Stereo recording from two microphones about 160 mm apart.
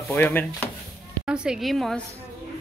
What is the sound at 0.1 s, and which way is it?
Speech, 10° left (ahead or behind).